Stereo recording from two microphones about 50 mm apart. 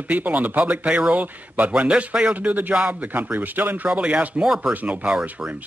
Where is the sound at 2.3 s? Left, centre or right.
Right.